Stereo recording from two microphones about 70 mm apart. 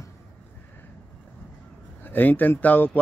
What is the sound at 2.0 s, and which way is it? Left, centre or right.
Speech, left.